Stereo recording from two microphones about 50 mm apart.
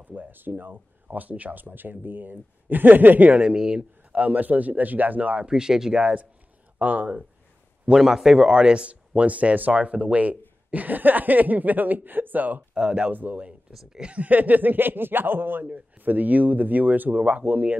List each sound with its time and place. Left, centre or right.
0.0 s speech: right
3.3 s a man's voice: centre
4.1 s speech: right
5.5 s a man's voice: centre
5.9 s speech: right
8.0 s a man's voice: centre
8.5 s speech: right
12.7 s a man's voice: centre
13.1 s speech: right
13.7 s speech: centre
14.0 s speech: right